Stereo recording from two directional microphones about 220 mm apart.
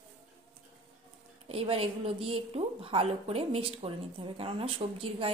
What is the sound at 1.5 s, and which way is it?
A woman's voice, 25° right (ahead or behind).